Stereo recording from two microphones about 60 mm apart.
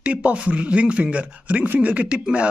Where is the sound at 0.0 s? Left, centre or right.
Right.